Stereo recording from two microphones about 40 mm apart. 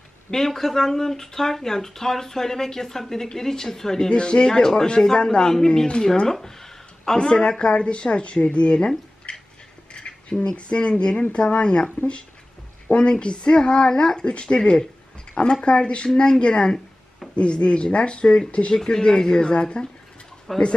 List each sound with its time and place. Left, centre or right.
0.3 s speech: centre
6.4 s a sound: centre
7.2 s speech: left
12.9 s speech: left
18.8 s speech: centre
20.5 s speech: centre